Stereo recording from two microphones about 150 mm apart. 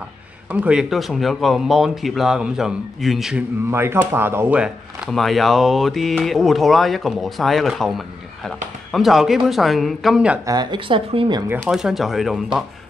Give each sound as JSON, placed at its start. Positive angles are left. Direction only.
{"t": 0.5, "sound": "speech", "side_deg": -10}
{"t": 3.7, "sound": "speech", "side_deg": -15}
{"t": 10.4, "sound": "speech", "side_deg": -25}
{"t": 11.6, "sound": "speech", "side_deg": 0}